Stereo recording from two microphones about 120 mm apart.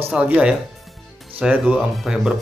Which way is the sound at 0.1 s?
10° right (ahead or behind).